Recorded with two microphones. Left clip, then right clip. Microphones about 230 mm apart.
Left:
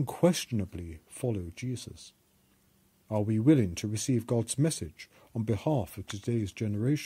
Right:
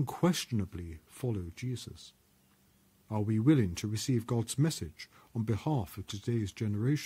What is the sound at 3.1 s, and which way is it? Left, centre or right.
Speech, centre.